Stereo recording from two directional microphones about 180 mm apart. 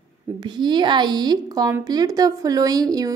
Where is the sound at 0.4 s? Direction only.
25° right (ahead or behind).